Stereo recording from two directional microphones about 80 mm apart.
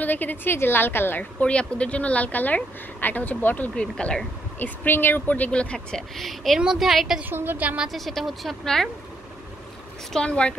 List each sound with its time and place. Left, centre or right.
0.0 s speech: left
1.4 s speech: centre
3.8 s speech: centre
4.6 s a woman's voice: left; by 7.2 s centre
7.2 s a woman's voice: right
7.8 s a woman's voice: centre
10.1 s speech: centre